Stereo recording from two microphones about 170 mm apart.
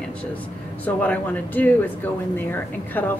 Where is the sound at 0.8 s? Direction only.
10° left (ahead or behind).